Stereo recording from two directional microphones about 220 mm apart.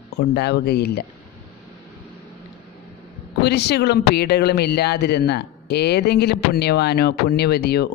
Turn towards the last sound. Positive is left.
turn(degrees=45)  # may be behind; listen again after turning